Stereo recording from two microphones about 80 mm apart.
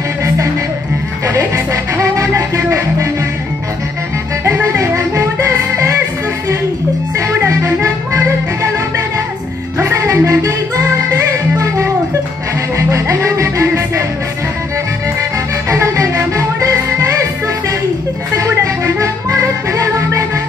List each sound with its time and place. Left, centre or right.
2.0 s music: right
4.5 s music: right
7.2 s music: right
9.8 s music: right
15.7 s music: right
18.4 s music: right